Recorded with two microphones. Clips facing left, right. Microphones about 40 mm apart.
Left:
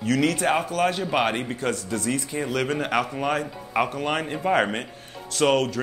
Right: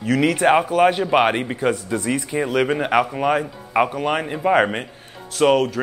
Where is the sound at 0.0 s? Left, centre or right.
Centre.